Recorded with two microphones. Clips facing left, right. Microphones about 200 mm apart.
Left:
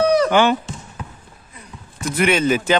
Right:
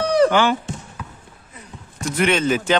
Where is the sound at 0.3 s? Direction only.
20° left (ahead or behind).